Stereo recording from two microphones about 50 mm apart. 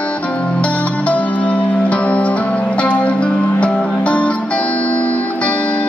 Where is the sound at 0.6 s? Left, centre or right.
Left.